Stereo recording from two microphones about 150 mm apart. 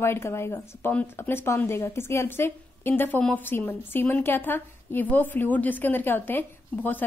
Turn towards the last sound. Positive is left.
turn(degrees=10)  # may be behind; listen again after turning